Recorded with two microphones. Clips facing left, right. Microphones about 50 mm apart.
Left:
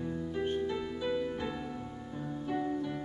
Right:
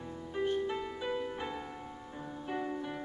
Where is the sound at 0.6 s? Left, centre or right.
Right.